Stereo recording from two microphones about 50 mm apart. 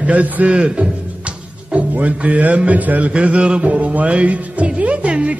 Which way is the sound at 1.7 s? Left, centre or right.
Right.